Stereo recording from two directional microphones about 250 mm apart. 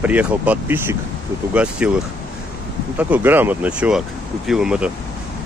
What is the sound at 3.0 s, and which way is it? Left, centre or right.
Speech, centre.